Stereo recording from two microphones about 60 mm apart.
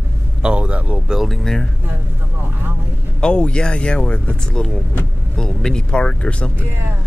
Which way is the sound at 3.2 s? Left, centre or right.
Centre.